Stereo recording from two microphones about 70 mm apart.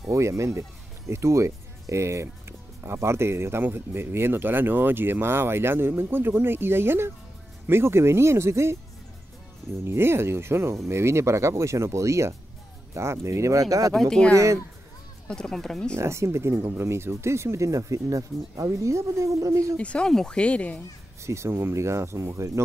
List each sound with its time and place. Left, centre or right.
0.1 s speech: right
9.8 s speech: right
13.9 s speech: centre
14.3 s speech: right
15.2 s speech: centre
16.0 s speech: right
19.8 s speech: centre
21.2 s speech: right